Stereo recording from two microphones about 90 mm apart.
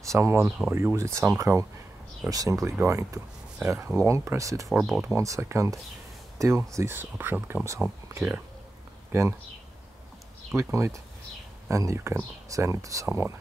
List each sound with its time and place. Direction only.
0.0 s speech: 30° right (ahead or behind)
4.6 s speech: centre (ahead or behind)
5.0 s speech: 35° right (ahead or behind)
9.1 s speech: 30° right (ahead or behind)
10.5 s speech: 35° right (ahead or behind)